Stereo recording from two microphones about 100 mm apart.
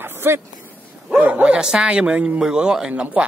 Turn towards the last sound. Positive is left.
turn(degrees=-5)  # may be behind; listen again after turning